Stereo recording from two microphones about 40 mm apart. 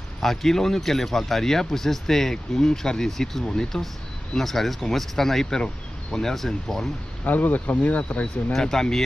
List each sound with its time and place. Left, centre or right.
0.2 s speech: centre
7.2 s speech: left
8.5 s speech: centre